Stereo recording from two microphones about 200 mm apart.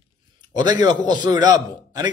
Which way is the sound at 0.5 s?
20° right (ahead or behind).